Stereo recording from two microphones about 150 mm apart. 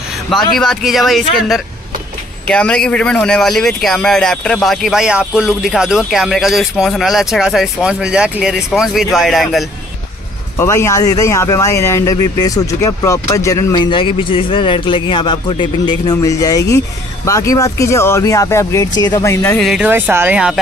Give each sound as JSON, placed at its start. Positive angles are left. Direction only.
{"t": 0.6, "sound": "speech", "side_deg": 0}
{"t": 2.4, "sound": "speech", "side_deg": 5}
{"t": 10.6, "sound": "speech", "side_deg": 15}
{"t": 13.8, "sound": "a man's voice", "side_deg": 35}
{"t": 16.2, "sound": "speech", "side_deg": 20}
{"t": 19.6, "sound": "speech", "side_deg": -5}
{"t": 19.9, "sound": "speech", "side_deg": -15}